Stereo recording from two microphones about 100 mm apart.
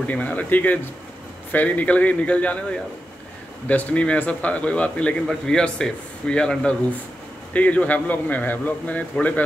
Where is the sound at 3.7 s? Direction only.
15° left (ahead or behind).